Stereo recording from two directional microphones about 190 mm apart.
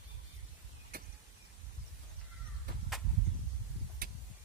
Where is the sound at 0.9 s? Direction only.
50° right (ahead or behind).